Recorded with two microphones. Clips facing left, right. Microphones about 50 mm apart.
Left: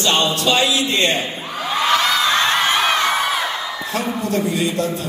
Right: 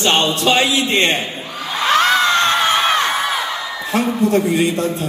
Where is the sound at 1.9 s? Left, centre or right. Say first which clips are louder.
Right 5 dB; right.